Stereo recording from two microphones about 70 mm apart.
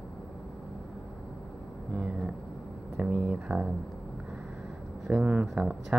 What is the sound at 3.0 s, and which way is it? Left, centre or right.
Speech, centre.